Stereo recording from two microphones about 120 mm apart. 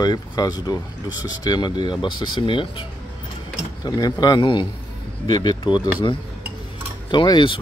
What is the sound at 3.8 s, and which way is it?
Speech, 35° left (ahead or behind).